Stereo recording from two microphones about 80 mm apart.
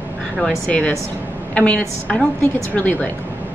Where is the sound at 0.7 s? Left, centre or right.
Centre.